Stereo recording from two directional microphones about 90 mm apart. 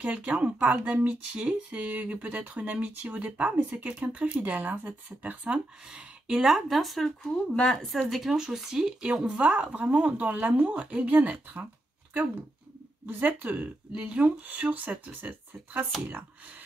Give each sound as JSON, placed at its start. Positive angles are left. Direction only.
{"t": 0.0, "sound": "speech", "side_deg": -15}
{"t": 13.0, "sound": "speech", "side_deg": -20}